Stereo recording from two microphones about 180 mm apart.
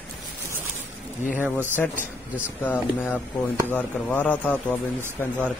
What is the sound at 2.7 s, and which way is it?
Speech, 10° left (ahead or behind).